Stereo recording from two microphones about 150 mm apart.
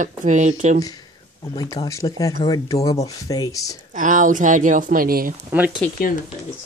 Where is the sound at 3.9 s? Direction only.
60° right (ahead or behind).